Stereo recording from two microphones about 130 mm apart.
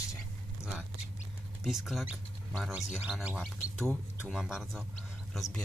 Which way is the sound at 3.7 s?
5° left (ahead or behind).